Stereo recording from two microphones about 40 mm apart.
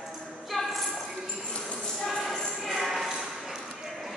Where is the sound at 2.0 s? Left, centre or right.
Centre.